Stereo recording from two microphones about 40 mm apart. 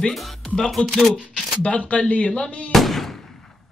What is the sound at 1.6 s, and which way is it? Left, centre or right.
Speech, left.